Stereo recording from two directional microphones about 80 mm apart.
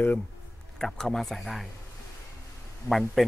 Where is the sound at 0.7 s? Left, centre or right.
Centre.